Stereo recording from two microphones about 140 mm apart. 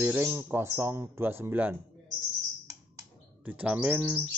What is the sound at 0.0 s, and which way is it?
Speech, 10° right (ahead or behind).